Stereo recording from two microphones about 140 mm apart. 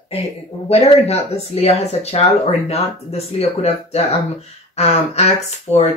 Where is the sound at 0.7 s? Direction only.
45° left (ahead or behind).